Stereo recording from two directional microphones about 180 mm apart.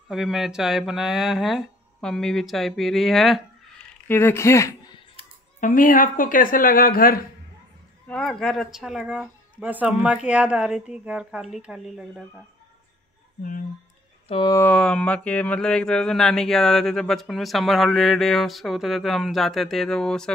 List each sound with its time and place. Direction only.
0.1 s speech: centre (ahead or behind)
4.1 s speech: 15° left (ahead or behind)
5.6 s speech: 50° left (ahead or behind)
8.1 s speech: 5° left (ahead or behind)
13.4 s speech: 50° left (ahead or behind)
14.2 s speech: 30° left (ahead or behind)
14.5 s speech: 10° left (ahead or behind)